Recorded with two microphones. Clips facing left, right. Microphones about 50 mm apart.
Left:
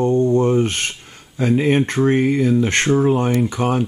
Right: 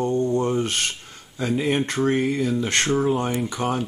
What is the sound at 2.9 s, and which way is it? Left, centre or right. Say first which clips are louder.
Speech: left 5 dB; centre.